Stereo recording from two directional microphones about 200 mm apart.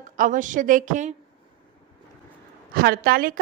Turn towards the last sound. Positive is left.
turn(degrees=-45)  # may be behind; listen again after turning